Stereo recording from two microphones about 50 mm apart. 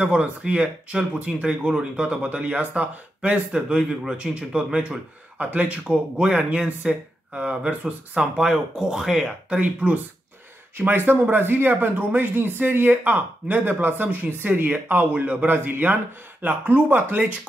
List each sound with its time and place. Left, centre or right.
0.0 s speech: right
2.2 s speech: right
3.5 s speech: centre
5.9 s speech: centre
9.5 s speech: right
10.8 s speech: right